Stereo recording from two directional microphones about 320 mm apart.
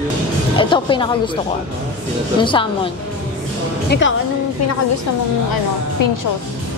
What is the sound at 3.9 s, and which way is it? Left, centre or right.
Speech, left.